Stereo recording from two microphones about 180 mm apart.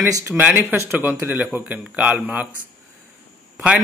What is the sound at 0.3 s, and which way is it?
Speech, 5° right (ahead or behind).